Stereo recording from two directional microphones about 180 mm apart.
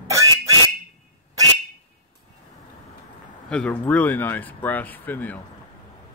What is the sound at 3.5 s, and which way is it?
Speech, 5° left (ahead or behind).